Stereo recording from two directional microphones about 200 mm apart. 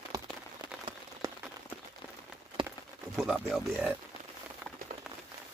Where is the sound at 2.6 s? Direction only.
25° right (ahead or behind).